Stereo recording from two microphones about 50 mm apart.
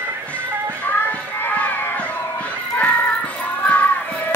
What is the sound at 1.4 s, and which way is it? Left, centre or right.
Run, left.